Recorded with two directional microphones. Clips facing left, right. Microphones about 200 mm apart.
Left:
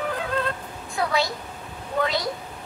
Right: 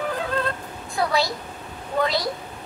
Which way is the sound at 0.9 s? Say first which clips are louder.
Right 2 dB; 35° right (ahead or behind).